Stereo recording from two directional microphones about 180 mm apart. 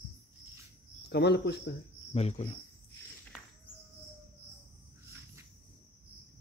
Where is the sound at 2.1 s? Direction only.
35° left (ahead or behind).